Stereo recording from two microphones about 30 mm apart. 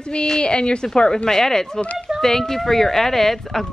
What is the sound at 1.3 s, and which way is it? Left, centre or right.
Speech, centre.